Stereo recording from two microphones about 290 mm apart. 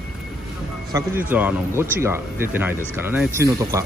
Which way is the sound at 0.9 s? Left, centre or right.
Centre.